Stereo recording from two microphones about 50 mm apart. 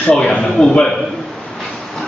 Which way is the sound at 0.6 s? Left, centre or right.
Centre.